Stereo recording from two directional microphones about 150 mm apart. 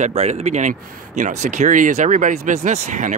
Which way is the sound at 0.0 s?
50° right (ahead or behind).